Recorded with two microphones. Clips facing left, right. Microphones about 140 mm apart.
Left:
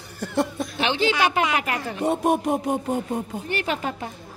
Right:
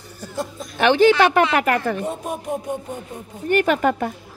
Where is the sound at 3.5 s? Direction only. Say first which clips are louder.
Right 11 dB; 50° right (ahead or behind).